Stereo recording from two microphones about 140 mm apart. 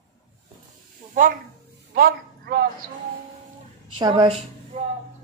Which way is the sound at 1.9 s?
90° right.